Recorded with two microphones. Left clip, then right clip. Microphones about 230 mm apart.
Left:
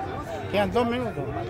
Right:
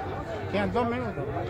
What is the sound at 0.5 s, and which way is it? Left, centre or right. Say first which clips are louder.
Speech: left 4 dB; left.